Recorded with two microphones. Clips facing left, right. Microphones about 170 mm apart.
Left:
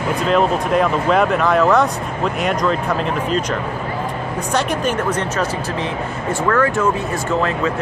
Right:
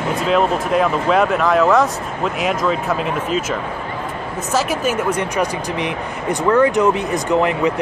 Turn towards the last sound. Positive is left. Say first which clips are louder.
# right 3 dB
turn(degrees=-15)  # may be behind; listen again after turning